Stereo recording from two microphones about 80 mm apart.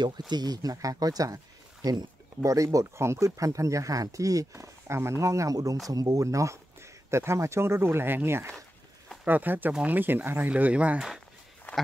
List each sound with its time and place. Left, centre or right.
0.3 s speech: right; by 11.1 s centre